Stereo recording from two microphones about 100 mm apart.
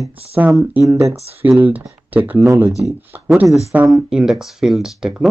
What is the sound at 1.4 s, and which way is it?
Speech, 15° right (ahead or behind).